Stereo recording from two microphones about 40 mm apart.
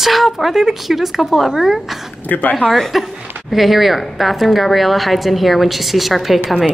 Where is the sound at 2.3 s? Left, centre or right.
Left.